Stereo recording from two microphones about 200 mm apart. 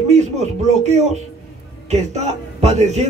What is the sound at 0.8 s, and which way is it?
Speech, 35° right (ahead or behind).